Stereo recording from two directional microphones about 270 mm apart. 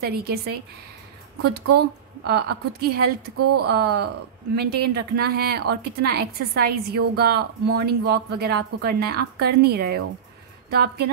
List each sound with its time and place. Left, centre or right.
0.0 s speech: right
2.2 s speech: right
3.3 s speech: right
3.6 s speech: right